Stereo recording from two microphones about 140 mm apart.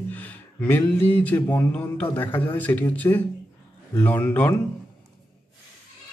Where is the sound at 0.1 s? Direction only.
10° left (ahead or behind).